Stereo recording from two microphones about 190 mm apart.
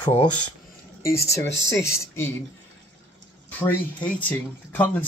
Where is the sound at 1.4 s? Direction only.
70° left (ahead or behind).